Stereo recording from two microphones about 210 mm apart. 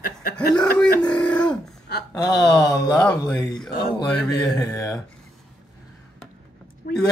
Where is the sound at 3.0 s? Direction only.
5° left (ahead or behind).